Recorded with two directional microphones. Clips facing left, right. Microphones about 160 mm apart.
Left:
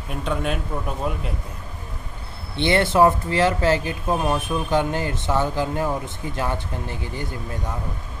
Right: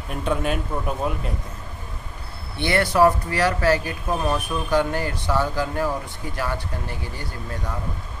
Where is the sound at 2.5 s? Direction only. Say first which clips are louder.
Left 2 dB; 20° left (ahead or behind).